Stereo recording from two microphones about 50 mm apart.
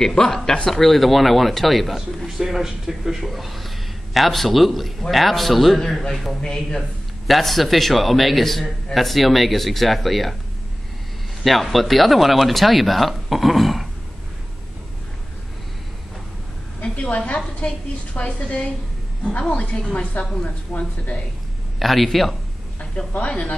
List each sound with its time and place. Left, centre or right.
0.0 s a man's voice: centre
6.4 s a man's voice: centre
7.2 s speech: centre
11.4 s speech: centre
16.8 s a sound: left
17.6 s a woman's voice: left
21.7 s speech: centre
22.8 s speech: left